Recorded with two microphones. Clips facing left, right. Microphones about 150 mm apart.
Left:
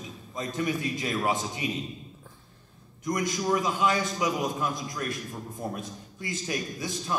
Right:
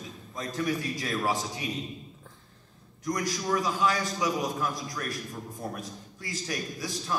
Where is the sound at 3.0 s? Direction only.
20° left (ahead or behind).